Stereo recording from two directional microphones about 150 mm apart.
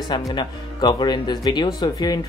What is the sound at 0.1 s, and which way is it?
Speech, 30° left (ahead or behind).